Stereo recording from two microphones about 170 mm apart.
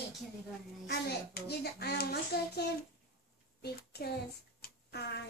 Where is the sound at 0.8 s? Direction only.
70° left (ahead or behind).